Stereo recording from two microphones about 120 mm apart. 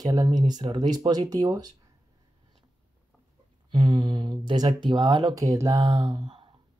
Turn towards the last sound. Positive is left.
turn(degrees=-40)  # may be behind; listen again after turning